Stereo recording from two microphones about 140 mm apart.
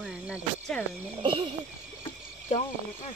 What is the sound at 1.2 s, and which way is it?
Owl, 35° right (ahead or behind).